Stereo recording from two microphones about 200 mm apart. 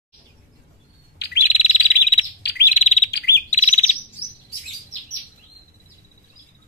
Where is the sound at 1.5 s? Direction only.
35° left (ahead or behind).